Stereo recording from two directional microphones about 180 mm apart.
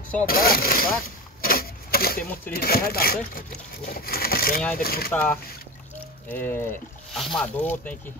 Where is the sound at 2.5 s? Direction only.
55° left (ahead or behind).